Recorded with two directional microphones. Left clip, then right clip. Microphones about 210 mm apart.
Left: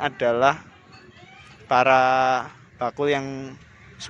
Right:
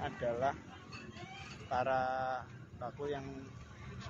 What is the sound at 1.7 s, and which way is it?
A man's voice, 30° left (ahead or behind).